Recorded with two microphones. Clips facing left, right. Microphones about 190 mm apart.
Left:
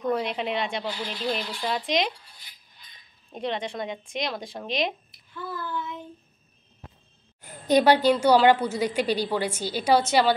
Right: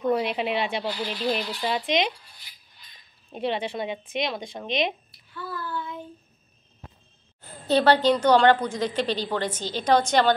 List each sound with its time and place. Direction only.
0.0 s speech: 5° right (ahead or behind)
3.3 s speech: 5° right (ahead or behind)
5.3 s a sound: 20° left (ahead or behind)
7.4 s a woman's voice: 15° left (ahead or behind)